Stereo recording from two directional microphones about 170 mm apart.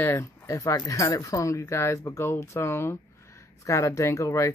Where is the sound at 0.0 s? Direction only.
15° left (ahead or behind).